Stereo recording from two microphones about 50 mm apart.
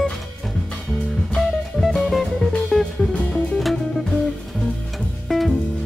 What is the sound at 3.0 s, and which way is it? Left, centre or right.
Music, centre.